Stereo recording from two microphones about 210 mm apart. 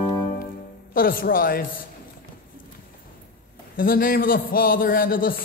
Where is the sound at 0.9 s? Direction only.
45° left (ahead or behind).